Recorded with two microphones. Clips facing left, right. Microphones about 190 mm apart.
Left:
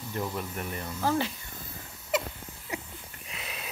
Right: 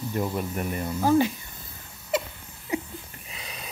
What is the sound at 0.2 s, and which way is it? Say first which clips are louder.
Speech: right 4 dB; 15° right (ahead or behind).